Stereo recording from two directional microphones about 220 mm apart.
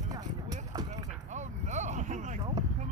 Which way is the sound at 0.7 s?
20° right (ahead or behind).